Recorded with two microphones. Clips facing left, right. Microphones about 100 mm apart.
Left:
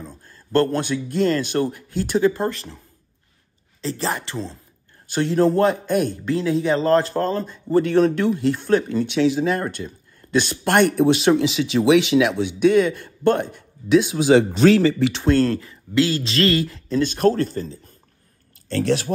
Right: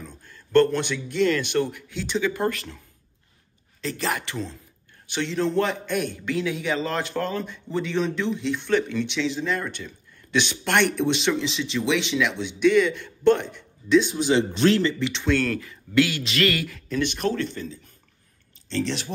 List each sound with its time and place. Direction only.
0.1 s speech: 40° left (ahead or behind)
2.3 s speech: 25° left (ahead or behind)
3.8 s speech: 25° left (ahead or behind)
5.0 s a man's voice: 45° left (ahead or behind); by 14.3 s 75° left (ahead or behind)
15.0 s a man's voice: 45° left (ahead or behind)
15.4 s speech: 25° left (ahead or behind)
17.0 s a man's voice: 40° left (ahead or behind)